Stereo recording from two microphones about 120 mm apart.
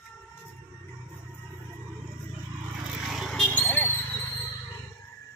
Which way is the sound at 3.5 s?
15° left (ahead or behind).